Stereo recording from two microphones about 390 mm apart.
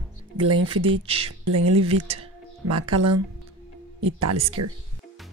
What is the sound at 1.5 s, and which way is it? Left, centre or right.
Speech, right.